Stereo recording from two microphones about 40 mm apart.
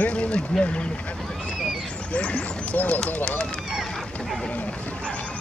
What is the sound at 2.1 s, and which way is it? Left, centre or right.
Speech, left.